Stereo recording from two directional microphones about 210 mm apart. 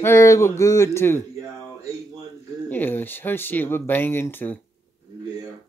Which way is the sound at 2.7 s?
10° left (ahead or behind).